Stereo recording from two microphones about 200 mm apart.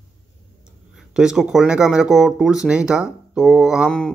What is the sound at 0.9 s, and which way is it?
Speech, 5° right (ahead or behind).